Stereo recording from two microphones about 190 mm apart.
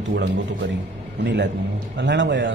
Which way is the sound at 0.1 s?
65° right (ahead or behind).